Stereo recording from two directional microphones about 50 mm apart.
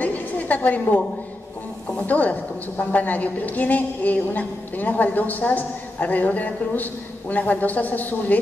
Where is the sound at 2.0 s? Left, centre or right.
Left.